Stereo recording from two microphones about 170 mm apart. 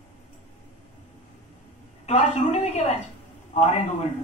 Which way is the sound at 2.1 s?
40° left (ahead or behind).